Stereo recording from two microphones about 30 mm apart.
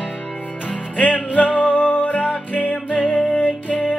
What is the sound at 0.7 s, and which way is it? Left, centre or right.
Music, left.